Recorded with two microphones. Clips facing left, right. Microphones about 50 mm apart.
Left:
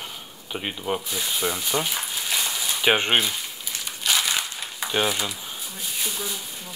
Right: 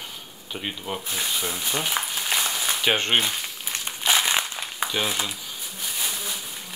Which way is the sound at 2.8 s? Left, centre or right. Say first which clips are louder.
Left 2 dB; centre.